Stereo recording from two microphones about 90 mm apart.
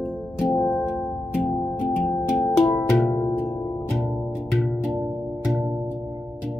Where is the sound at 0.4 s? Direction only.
5° left (ahead or behind).